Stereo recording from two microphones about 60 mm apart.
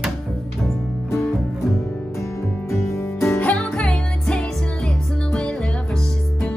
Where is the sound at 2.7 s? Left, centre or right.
Left.